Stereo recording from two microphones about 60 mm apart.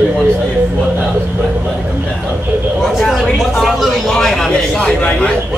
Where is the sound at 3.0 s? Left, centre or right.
Centre.